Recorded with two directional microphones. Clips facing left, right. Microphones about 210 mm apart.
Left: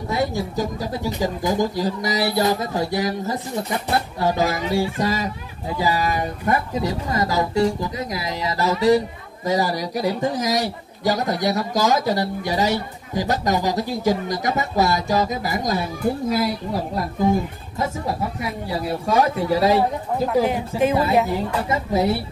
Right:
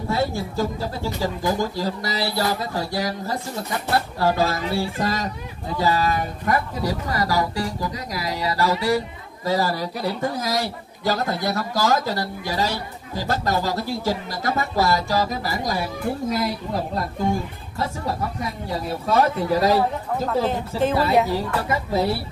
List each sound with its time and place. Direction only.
0.1 s a man's voice: 15° left (ahead or behind)